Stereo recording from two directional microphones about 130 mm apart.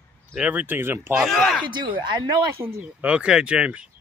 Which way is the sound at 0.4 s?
10° right (ahead or behind).